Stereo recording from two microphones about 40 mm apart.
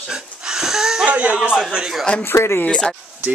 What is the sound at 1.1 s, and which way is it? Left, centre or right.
Speech, right.